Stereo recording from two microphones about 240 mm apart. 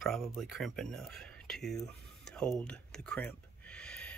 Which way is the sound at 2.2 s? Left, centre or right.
Centre.